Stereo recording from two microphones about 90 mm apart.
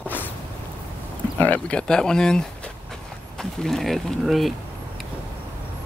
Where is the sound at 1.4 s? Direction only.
15° left (ahead or behind).